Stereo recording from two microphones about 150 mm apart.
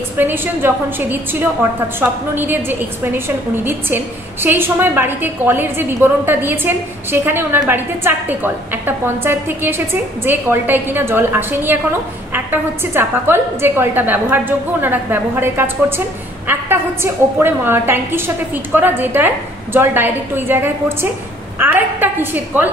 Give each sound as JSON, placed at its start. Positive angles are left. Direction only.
{"t": 0.2, "sound": "a woman's voice", "side_deg": -15}